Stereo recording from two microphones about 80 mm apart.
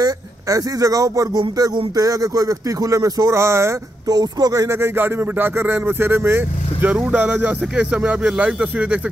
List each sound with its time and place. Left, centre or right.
0.0 s speech: right
4.1 s speech: right
4.7 s speech: right
7.7 s speech: centre